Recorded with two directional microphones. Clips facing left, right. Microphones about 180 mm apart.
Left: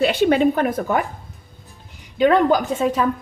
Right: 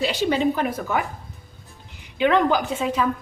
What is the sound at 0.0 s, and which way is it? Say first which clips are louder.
A woman's voice: left 5 dB; 55° left (ahead or behind).